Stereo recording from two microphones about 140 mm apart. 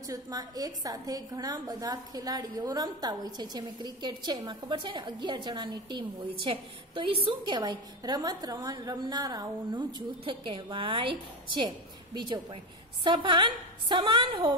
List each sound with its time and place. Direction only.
0.0 s a woman's voice: 25° right (ahead or behind)